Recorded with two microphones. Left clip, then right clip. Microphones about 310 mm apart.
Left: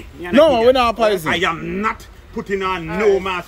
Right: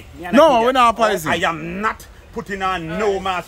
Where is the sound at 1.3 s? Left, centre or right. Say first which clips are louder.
Left 1 dB; right.